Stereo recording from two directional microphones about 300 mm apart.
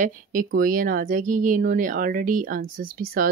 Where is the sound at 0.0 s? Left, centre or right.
Right.